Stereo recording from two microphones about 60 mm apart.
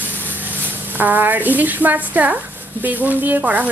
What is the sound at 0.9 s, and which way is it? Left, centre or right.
Speech, right.